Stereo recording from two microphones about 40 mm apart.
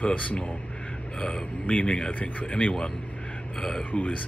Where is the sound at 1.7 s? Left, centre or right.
Left.